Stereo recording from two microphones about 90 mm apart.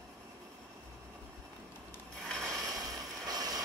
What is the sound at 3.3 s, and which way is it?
Vehicle, 45° right (ahead or behind).